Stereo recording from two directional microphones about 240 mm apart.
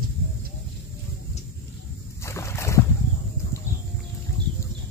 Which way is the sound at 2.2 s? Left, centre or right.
Centre.